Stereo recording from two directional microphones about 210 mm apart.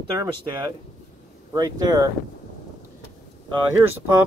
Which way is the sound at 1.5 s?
20° right (ahead or behind).